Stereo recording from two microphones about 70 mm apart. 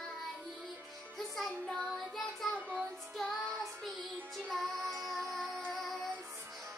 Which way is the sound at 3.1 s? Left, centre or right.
Centre.